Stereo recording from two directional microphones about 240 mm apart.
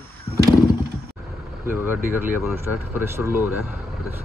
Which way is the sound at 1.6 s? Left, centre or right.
Centre.